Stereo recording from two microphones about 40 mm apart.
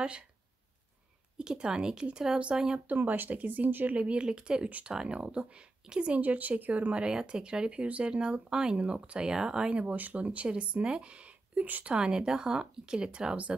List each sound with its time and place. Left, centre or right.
1.4 s speech: centre
2.9 s speech: right
3.9 s a woman's voice: right
6.2 s speech: right
7.1 s speech: centre
9.8 s speech: right